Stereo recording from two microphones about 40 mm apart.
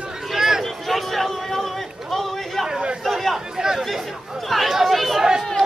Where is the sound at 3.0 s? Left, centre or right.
Centre.